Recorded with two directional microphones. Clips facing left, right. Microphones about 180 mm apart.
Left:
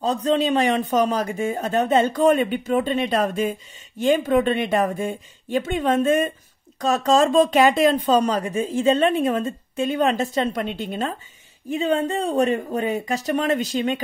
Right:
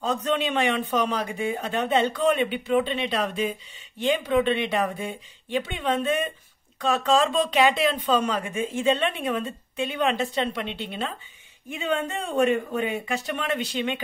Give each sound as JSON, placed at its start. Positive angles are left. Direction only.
{"t": 0.0, "sound": "speech", "side_deg": 35}